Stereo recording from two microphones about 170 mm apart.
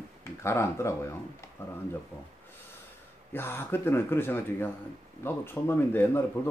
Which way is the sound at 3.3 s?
15° left (ahead or behind).